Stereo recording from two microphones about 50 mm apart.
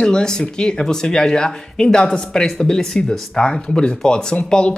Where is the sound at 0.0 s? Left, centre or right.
Centre.